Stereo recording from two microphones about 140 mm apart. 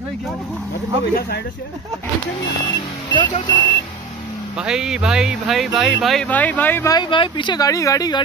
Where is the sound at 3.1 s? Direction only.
35° left (ahead or behind).